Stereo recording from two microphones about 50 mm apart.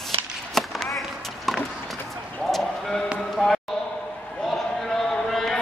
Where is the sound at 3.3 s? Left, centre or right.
Centre.